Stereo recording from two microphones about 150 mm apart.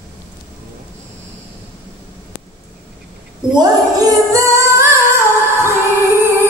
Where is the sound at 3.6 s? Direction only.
20° right (ahead or behind).